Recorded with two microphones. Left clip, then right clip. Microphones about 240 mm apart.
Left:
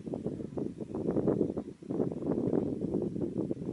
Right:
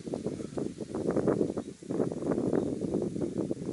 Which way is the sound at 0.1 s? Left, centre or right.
Left.